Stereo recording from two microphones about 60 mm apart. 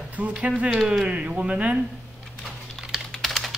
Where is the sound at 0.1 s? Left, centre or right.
Right.